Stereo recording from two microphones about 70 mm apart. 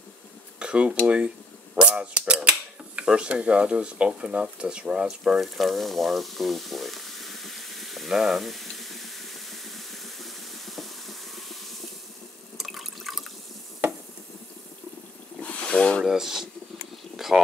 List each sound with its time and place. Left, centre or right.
0.6 s dishes: centre
1.0 s speech: centre
5.4 s frying: centre
12.5 s water: centre
15.4 s a sound: centre
16.0 s speech: centre
17.2 s a sound: centre